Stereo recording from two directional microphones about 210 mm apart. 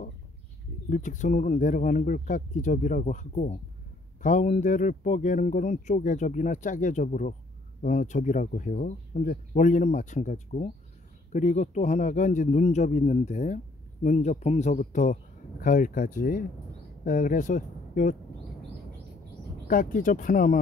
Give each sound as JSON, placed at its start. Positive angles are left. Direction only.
{"t": 0.8, "sound": "speech", "side_deg": 40}
{"t": 19.7, "sound": "speech", "side_deg": 40}